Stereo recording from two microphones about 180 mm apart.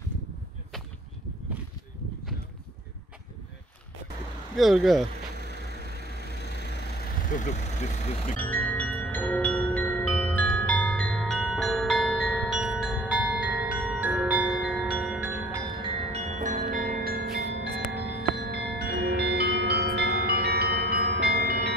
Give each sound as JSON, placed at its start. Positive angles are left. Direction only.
{"t": 4.6, "sound": "speech", "side_deg": 0}
{"t": 6.3, "sound": "vehicle", "side_deg": 65}
{"t": 7.2, "sound": "speech", "side_deg": 45}
{"t": 8.4, "sound": "music", "side_deg": 10}
{"t": 15.8, "sound": "music", "side_deg": -35}
{"t": 18.3, "sound": "tubular bells", "side_deg": -65}